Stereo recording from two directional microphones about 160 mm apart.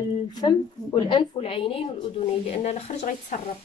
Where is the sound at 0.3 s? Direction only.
25° left (ahead or behind); by 3.3 s 45° left (ahead or behind).